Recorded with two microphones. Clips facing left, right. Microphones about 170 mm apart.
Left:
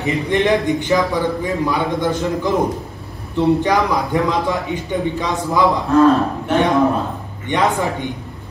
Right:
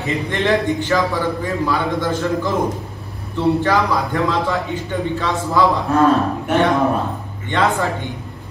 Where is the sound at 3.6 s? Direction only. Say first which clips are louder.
Left 1 dB; 15° left (ahead or behind).